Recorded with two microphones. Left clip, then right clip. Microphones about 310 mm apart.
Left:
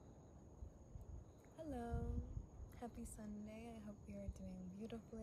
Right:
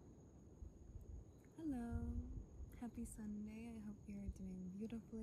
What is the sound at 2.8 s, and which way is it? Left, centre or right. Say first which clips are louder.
A woman's voice: even; centre.